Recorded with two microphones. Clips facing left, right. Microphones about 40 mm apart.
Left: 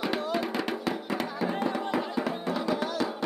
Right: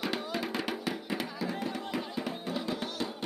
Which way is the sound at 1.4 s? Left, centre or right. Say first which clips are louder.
Left 6 dB; left.